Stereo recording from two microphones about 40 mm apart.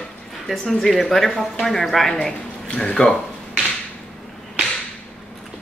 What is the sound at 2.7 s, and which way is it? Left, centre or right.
Chuckle, left.